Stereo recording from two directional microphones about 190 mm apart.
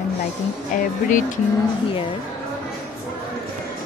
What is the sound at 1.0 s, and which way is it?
Music, 45° left (ahead or behind).